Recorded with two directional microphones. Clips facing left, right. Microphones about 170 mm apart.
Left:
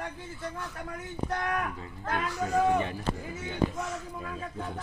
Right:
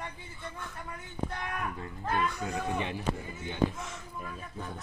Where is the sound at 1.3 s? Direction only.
85° left.